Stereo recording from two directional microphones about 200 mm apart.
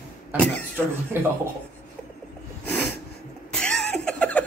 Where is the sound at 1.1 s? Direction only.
10° right (ahead or behind).